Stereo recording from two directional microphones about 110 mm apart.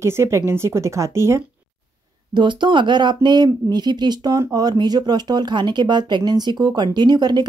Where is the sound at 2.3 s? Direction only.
45° right (ahead or behind).